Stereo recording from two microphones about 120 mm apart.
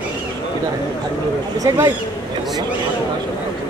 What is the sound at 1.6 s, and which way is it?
Speech, 25° right (ahead or behind).